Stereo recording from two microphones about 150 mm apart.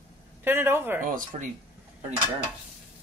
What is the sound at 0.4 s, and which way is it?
Speech, 15° right (ahead or behind).